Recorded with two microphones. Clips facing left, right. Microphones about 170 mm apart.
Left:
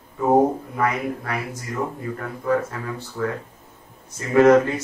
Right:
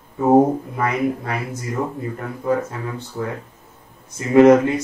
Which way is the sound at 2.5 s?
20° right (ahead or behind).